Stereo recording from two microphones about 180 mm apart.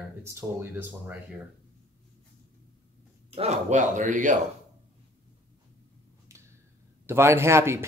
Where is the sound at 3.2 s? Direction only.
35° right (ahead or behind).